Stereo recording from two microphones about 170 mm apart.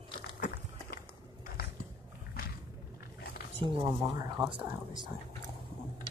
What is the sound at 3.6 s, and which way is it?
Speech, 30° right (ahead or behind).